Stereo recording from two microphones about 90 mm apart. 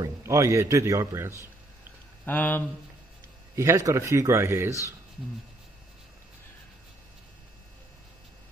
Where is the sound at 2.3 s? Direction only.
20° left (ahead or behind).